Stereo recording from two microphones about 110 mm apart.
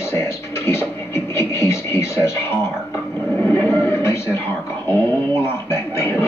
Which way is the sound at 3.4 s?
20° left (ahead or behind).